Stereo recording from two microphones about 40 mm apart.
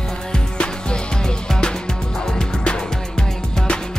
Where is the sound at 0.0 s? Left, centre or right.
Centre.